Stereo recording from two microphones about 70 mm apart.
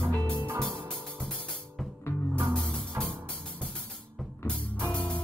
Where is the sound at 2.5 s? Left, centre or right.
Centre.